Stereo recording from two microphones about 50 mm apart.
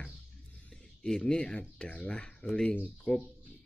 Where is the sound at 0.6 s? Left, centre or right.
Centre.